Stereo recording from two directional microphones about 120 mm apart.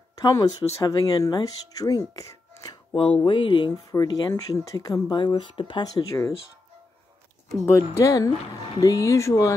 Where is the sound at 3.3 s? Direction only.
40° left (ahead or behind).